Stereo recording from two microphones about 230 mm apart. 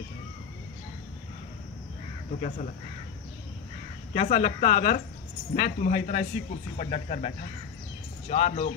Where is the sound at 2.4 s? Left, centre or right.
Left.